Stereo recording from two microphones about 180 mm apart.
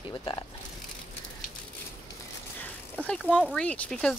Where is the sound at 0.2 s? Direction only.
25° left (ahead or behind).